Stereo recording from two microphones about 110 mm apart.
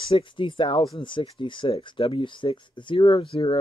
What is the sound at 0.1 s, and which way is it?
Speech, 50° left (ahead or behind).